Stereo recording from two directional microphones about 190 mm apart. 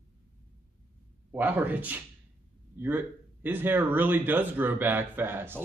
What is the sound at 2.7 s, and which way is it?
Speech, 10° right (ahead or behind).